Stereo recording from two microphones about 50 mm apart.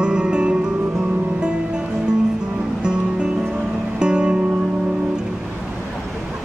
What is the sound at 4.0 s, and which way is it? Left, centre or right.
Music, centre.